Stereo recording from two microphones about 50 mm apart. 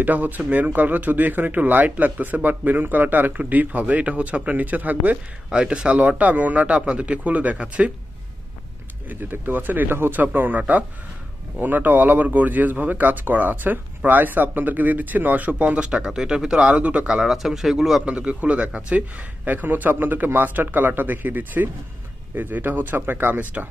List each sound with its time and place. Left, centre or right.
0.0 s speech: right
5.5 s speech: right
9.1 s speech: right; by 16.7 s centre
16.7 s speech: right
17.1 s a man's voice: centre
18.0 s speech: right
19.4 s speech: right